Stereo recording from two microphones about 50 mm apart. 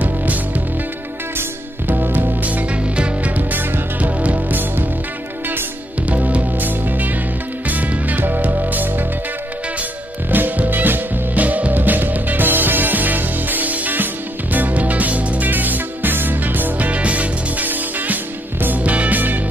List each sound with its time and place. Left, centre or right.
0.0 s music: right
1.9 s music: right
2.4 s music: right
6.0 s music: right
10.3 s music: right